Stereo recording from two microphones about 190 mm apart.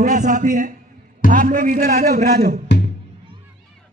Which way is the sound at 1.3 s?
45° right (ahead or behind).